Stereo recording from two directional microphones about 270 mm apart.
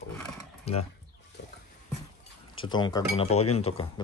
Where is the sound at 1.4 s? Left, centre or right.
Left.